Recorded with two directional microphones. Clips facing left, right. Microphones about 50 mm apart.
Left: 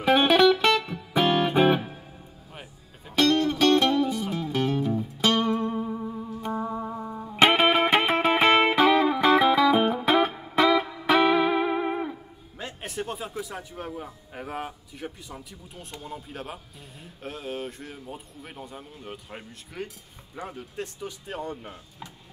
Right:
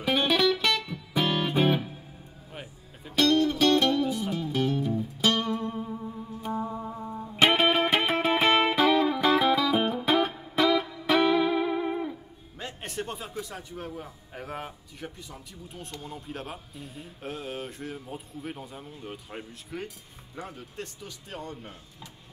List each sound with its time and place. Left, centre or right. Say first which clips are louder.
0.0 s music: left 6 dB; left
3.2 s music: left 1 dB; left
5.6 s music: left 5 dB; left
6.8 s music: left 2 dB; left
12.5 s music: left 2 dB; centre
13.8 s a man's voice: left 2 dB; centre
20.3 s speech: left 3 dB; centre